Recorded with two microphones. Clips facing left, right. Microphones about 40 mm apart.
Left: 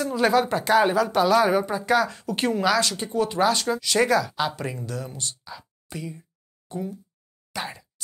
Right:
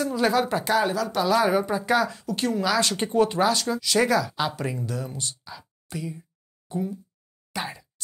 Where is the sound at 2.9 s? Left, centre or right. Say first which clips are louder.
Right 4 dB; right.